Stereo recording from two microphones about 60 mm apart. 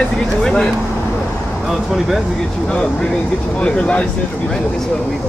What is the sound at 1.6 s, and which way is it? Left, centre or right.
Speech, centre.